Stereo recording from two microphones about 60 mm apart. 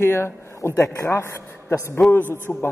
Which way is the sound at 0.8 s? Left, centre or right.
Left.